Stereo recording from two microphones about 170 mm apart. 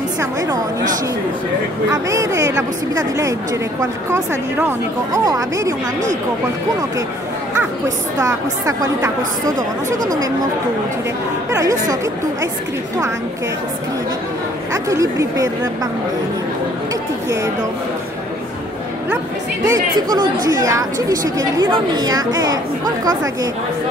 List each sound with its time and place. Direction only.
1.9 s a woman's voice: 20° right (ahead or behind)
8.2 s a woman's voice: 20° right (ahead or behind)
11.5 s a woman's voice: 20° right (ahead or behind)
14.7 s a woman's voice: 20° right (ahead or behind)
19.6 s a woman's voice: 20° right (ahead or behind)